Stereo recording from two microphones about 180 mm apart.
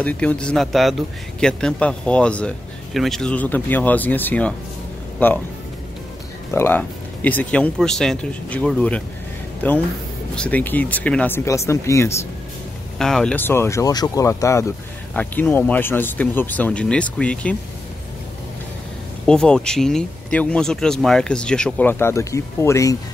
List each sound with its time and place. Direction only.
0.0 s speech: 5° left (ahead or behind)
6.5 s speech: 10° left (ahead or behind)
13.0 s speech: 5° left (ahead or behind)
19.2 s speech: 5° left (ahead or behind)